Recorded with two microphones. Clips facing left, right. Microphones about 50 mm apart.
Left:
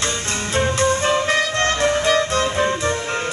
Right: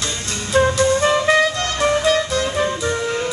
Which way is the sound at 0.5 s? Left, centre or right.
Left.